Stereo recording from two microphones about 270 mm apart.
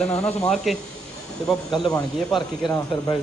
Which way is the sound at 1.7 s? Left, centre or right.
Centre.